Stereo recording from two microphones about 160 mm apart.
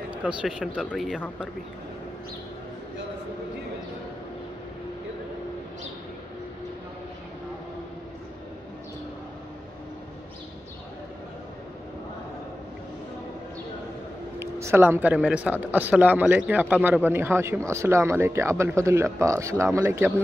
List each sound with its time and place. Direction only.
0.1 s speech: 10° right (ahead or behind)
14.4 s speech: 15° right (ahead or behind)